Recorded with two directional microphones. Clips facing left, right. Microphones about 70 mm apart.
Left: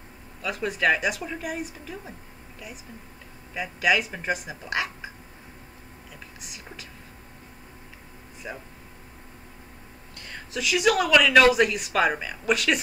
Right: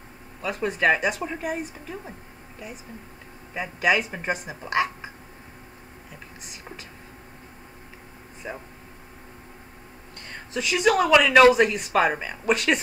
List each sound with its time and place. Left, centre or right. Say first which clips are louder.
0.4 s speech: right 2 dB; right
3.5 s speech: right 1 dB; right
8.4 s speech: right 2 dB; centre
10.1 s a sound: right 2 dB; right
10.9 s speech: right 2 dB; right